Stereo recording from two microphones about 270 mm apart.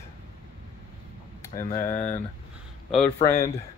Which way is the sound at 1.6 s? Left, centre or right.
Centre.